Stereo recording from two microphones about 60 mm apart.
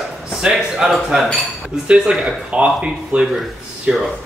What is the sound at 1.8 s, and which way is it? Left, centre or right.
Speech, centre.